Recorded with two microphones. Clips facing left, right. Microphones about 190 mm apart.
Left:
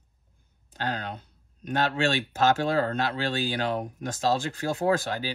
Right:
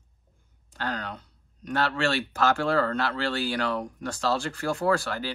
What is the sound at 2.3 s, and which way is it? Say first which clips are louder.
Speech: left 1 dB; 20° left (ahead or behind).